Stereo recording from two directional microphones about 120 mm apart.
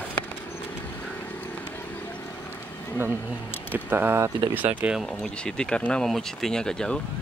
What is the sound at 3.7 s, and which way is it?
Speech, 15° right (ahead or behind).